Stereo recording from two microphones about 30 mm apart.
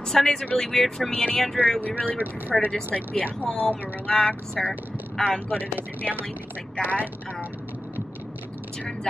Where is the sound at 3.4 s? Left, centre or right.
Left.